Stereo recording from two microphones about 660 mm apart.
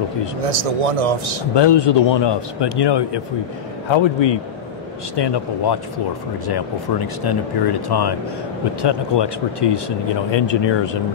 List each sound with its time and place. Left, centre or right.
0.4 s speech: right
1.5 s speech: left